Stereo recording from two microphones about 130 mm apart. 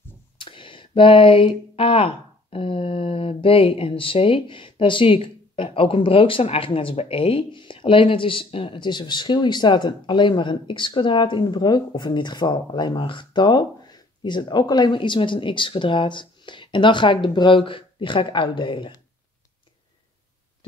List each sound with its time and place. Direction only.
0.4 s speech: 40° left (ahead or behind)